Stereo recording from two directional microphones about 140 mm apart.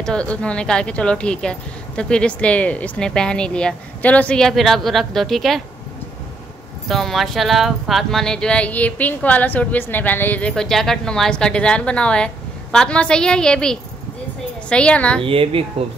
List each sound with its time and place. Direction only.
0.0 s speech: 5° left (ahead or behind)
6.9 s a woman's voice: centre (ahead or behind)
15.2 s speech: 40° right (ahead or behind)